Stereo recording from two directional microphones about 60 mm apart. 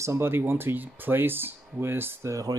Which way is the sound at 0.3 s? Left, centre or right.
Right.